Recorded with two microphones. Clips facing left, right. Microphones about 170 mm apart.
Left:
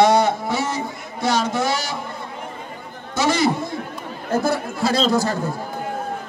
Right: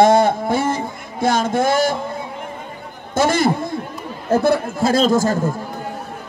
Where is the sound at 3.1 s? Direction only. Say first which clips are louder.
Right 3 dB; 50° right (ahead or behind).